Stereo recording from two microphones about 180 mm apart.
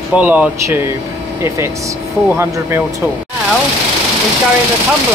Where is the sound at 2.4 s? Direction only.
15° right (ahead or behind).